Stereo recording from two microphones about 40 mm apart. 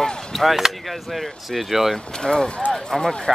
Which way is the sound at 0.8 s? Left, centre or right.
Centre.